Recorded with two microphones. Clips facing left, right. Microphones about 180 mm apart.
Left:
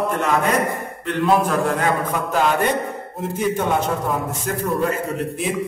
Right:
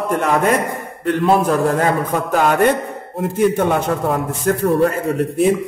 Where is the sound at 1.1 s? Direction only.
40° right (ahead or behind); by 4.7 s 60° right (ahead or behind).